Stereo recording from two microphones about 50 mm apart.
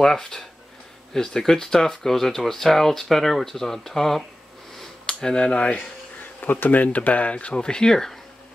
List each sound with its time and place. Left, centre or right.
0.0 s speech: centre
4.7 s a sound: centre
6.4 s speech: left; by 8.2 s centre